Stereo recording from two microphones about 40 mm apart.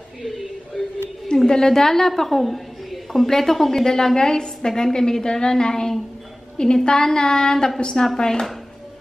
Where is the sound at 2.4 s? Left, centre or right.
Centre.